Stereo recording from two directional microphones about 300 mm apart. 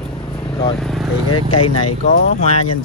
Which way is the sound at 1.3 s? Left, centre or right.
Left.